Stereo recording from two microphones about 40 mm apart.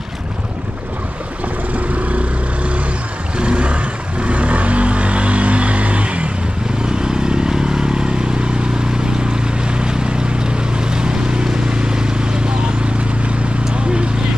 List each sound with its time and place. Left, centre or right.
2.0 s vehicle: right
3.3 s vehicle: right
13.7 s a sound: right